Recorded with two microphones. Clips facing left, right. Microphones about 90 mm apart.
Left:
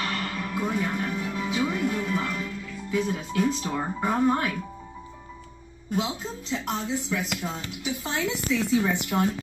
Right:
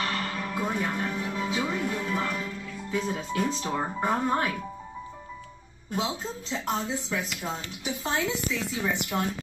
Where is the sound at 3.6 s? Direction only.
20° right (ahead or behind).